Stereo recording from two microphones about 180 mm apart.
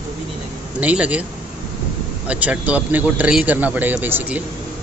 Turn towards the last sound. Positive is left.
turn(degrees=-10)  # may be behind; listen again after turning